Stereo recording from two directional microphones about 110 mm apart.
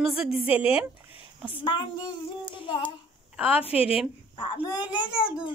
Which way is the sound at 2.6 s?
45° left (ahead or behind).